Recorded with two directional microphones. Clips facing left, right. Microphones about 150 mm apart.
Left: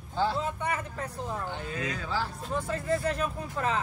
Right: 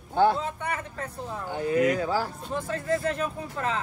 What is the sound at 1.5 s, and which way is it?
Speech, 40° right (ahead or behind).